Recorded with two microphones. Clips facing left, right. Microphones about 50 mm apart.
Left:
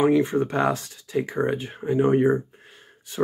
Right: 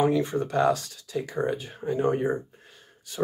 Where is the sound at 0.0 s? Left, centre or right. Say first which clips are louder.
Left 4 dB; left.